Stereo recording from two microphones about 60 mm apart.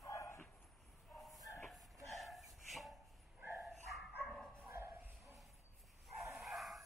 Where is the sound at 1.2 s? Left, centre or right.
Centre.